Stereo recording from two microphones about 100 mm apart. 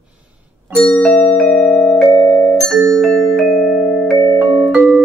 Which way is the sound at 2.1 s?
20° left (ahead or behind).